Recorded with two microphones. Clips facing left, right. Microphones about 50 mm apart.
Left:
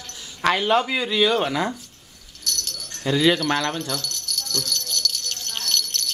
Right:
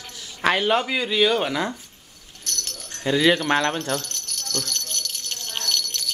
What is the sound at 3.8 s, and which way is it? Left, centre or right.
Jingle bell, right.